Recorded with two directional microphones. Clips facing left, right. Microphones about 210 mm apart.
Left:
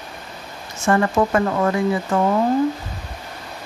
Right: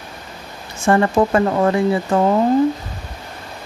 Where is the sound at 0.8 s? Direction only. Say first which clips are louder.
Right 3 dB; 30° right (ahead or behind).